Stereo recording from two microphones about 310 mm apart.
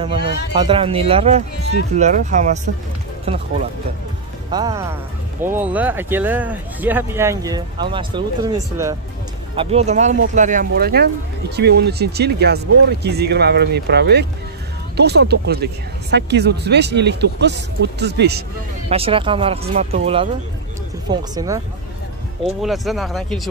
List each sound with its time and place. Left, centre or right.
0.5 s speech: centre
4.5 s speech: centre; by 18.4 s right
18.9 s speech: centre
22.4 s speech: centre